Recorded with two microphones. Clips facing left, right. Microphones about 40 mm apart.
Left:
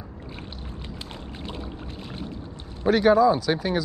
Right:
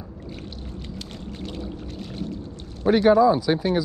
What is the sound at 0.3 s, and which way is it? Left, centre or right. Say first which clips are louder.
Boat: right 2 dB; centre.